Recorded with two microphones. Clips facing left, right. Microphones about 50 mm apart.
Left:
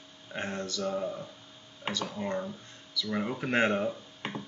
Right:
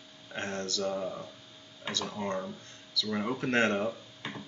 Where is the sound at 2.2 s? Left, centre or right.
Centre.